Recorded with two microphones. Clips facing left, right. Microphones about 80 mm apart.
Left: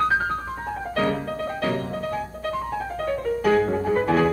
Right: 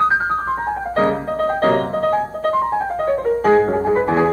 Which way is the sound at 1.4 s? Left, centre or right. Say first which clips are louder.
Right 10 dB; right.